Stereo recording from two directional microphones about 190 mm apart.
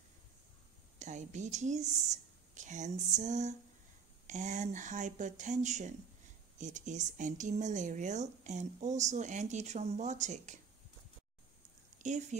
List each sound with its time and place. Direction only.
0.9 s speech: 40° right (ahead or behind)
12.0 s speech: 40° right (ahead or behind)